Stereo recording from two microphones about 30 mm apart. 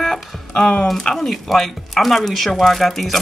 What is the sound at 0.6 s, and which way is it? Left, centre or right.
Speech, left.